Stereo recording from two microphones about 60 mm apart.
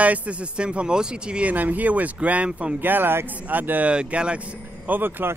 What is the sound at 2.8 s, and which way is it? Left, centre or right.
Speech, right.